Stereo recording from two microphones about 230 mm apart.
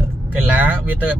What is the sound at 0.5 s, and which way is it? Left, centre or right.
Speech, centre.